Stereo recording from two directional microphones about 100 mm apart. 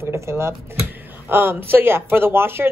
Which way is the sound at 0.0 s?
25° right (ahead or behind).